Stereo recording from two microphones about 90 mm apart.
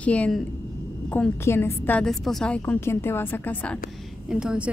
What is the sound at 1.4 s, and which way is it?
Speech, 30° left (ahead or behind).